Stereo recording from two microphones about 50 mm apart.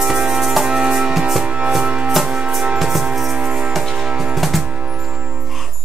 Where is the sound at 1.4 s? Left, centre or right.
Right.